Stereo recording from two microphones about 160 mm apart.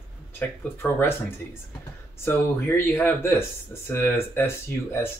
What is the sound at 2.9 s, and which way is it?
Speech, 15° left (ahead or behind).